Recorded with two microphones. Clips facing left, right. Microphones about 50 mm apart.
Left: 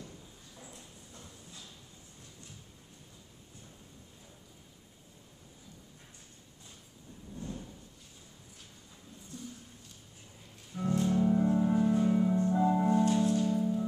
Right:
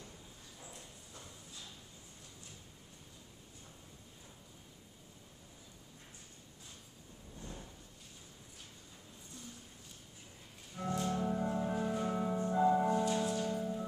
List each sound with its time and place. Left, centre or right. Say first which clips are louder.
7.3 s drawer open or close: left 7 dB; centre
10.8 s music: left 7 dB; centre
13.2 s music: left 6 dB; centre
13.5 s music: left 6 dB; centre